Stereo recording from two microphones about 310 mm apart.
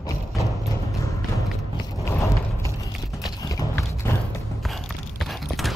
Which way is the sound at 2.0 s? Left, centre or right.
Centre.